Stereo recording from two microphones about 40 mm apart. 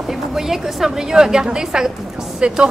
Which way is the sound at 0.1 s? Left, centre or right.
Centre.